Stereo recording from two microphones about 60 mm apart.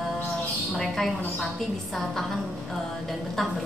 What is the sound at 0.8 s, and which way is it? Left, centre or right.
Speech, centre.